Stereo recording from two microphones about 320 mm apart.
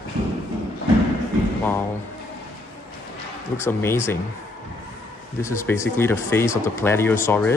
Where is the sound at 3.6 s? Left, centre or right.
Centre.